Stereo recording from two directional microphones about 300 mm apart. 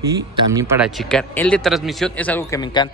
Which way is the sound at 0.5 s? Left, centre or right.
Centre.